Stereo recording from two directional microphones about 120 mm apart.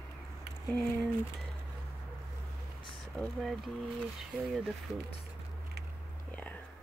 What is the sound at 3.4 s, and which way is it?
Speech, centre (ahead or behind).